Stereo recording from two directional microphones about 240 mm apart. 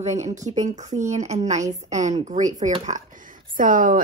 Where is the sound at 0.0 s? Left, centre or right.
Right.